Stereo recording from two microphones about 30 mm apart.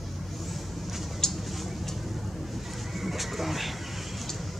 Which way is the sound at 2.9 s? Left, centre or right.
Centre.